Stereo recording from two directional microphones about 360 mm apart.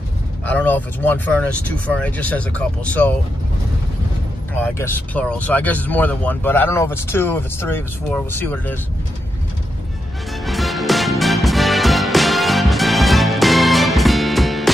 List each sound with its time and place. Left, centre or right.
0.5 s speech: centre
4.6 s speech: centre
10.4 s music: centre